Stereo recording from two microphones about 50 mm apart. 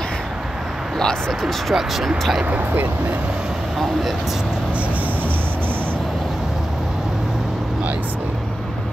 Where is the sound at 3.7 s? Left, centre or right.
Centre.